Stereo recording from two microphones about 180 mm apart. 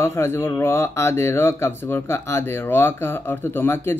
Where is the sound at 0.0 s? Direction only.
15° left (ahead or behind).